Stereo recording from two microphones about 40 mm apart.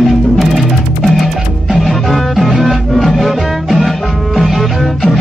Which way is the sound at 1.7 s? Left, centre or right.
Centre.